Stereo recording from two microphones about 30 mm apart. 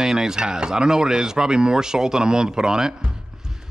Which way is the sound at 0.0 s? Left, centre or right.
Right.